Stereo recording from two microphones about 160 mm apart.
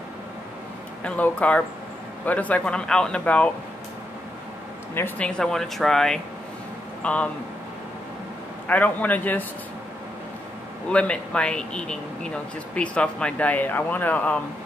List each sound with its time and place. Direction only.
1.0 s speech: 10° left (ahead or behind)
4.9 s speech: 15° left (ahead or behind)
5.4 s speech: centre (ahead or behind)
8.6 s speech: 10° left (ahead or behind)
10.9 s speech: 5° left (ahead or behind)